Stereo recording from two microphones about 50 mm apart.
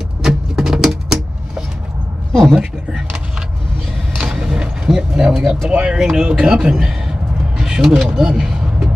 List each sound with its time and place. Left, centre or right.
0.2 s typewriter: centre
2.5 s a sound: centre
5.9 s speech: centre
6.2 s bird: centre